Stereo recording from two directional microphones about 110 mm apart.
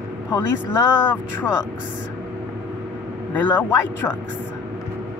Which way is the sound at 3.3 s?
15° left (ahead or behind).